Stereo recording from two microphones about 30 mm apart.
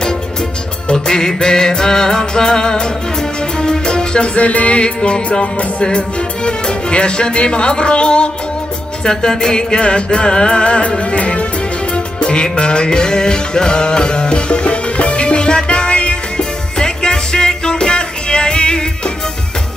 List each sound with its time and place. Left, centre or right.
0.9 s music: left
4.4 s music: left
5.8 s speech: left
9.0 s music: centre
10.6 s music: left